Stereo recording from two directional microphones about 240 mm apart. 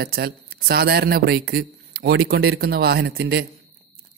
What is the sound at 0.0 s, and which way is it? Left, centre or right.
A man's voice, right.